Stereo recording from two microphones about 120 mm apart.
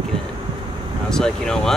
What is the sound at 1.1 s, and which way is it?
Speech, 5° left (ahead or behind).